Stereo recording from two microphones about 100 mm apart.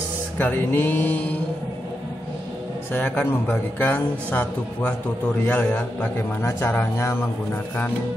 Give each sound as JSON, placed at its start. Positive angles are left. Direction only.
{"t": 0.4, "sound": "speech", "side_deg": 20}
{"t": 2.9, "sound": "a man's voice", "side_deg": 20}